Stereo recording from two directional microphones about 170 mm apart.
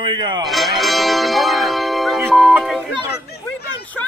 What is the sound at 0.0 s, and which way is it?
Speech, 25° right (ahead or behind).